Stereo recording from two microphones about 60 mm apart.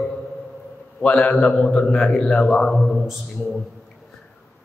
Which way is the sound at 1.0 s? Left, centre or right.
Centre.